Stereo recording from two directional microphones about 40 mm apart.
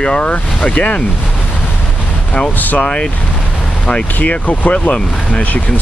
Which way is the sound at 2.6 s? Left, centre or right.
Left.